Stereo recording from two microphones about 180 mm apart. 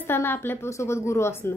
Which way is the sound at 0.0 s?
10° left (ahead or behind).